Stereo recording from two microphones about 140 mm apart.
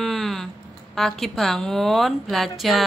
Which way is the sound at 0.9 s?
Centre (ahead or behind).